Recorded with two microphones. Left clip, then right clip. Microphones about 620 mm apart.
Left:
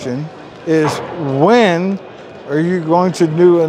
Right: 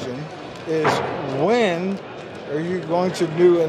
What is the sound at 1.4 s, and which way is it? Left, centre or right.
Speech, left.